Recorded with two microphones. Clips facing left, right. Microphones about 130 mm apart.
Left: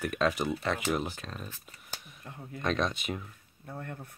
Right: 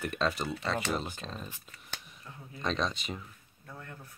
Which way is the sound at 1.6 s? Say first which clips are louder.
Even; 10° left (ahead or behind).